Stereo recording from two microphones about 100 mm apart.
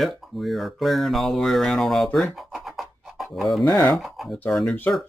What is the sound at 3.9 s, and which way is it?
Speech, centre (ahead or behind).